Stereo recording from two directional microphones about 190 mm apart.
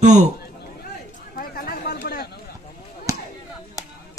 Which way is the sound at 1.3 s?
50° left (ahead or behind).